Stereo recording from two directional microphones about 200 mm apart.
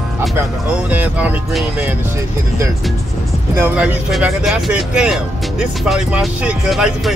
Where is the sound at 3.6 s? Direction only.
5° right (ahead or behind).